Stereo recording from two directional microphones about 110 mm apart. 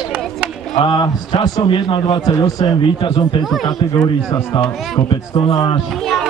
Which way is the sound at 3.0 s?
50° left (ahead or behind).